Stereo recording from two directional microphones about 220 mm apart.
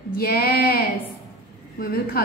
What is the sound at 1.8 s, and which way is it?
Speech, 40° left (ahead or behind).